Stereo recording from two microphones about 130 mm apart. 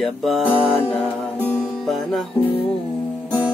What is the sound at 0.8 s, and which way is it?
Music, 10° left (ahead or behind).